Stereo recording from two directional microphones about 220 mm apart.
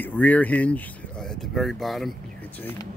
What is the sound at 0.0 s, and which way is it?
Speech, 10° left (ahead or behind).